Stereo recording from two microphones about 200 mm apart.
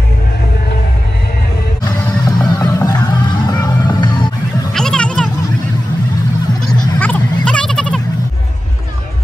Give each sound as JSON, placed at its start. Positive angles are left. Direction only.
{"t": 2.2, "sound": "music", "side_deg": 20}
{"t": 4.7, "sound": "a sound", "side_deg": 5}
{"t": 7.0, "sound": "goat", "side_deg": 5}